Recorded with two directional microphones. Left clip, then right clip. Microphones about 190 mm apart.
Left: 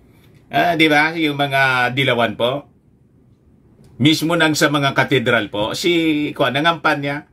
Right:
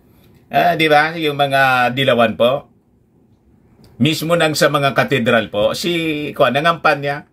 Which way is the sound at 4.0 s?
Centre (ahead or behind).